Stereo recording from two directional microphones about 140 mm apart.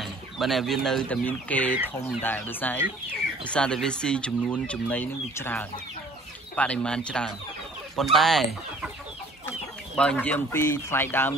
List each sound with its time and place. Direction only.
0.0 s speech: centre (ahead or behind)
9.9 s speech: 10° left (ahead or behind)